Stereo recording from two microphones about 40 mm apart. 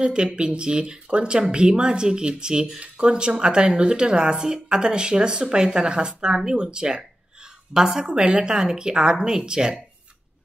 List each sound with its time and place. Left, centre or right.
0.0 s a woman's voice: right